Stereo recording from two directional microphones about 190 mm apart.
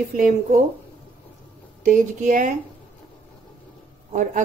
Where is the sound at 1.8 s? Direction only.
40° right (ahead or behind).